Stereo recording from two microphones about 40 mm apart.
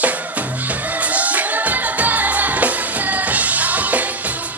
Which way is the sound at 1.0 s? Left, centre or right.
Right.